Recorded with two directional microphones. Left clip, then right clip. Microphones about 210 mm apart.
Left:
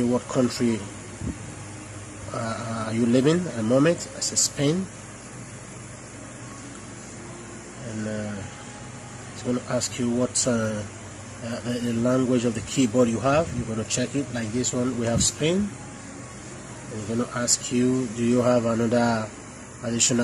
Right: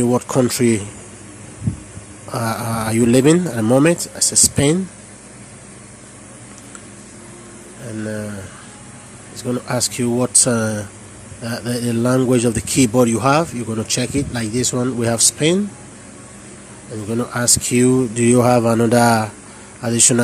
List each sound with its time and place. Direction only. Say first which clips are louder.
0.1 s a man's voice: right 7 dB; 35° right (ahead or behind)
2.3 s a man's voice: right 8 dB; 35° right (ahead or behind)
9.4 s a man's voice: right 6 dB; 35° right (ahead or behind)
17.2 s a man's voice: right 7 dB; 35° right (ahead or behind)